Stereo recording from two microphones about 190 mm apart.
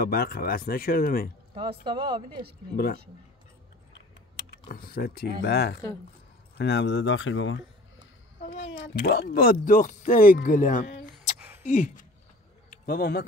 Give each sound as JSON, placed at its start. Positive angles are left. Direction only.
{"t": 0.0, "sound": "speech", "side_deg": 55}
{"t": 1.5, "sound": "speech", "side_deg": -25}
{"t": 4.4, "sound": "speech", "side_deg": 55}
{"t": 8.9, "sound": "speech", "side_deg": 55}
{"t": 12.6, "sound": "a sound", "side_deg": 50}